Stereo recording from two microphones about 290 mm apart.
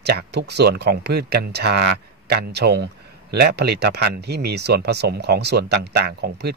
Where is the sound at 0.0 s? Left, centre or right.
Right.